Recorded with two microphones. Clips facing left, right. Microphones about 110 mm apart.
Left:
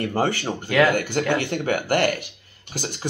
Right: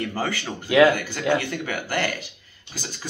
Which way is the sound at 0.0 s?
55° left (ahead or behind).